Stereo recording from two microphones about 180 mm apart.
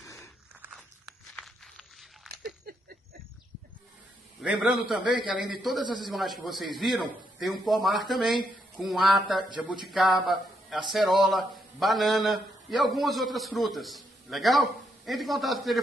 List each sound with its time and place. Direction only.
0.0 s biting: 15° left (ahead or behind)
0.7 s walk: 5° left (ahead or behind)
4.4 s speech: centre (ahead or behind)